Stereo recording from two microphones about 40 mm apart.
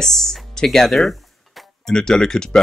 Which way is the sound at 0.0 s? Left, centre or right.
Centre.